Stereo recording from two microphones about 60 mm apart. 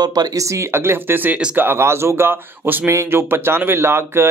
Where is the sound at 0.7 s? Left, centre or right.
Right.